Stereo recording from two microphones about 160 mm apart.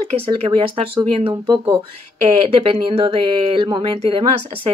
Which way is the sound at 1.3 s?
25° right (ahead or behind).